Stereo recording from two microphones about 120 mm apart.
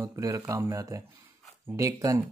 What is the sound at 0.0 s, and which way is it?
Speech, 25° right (ahead or behind).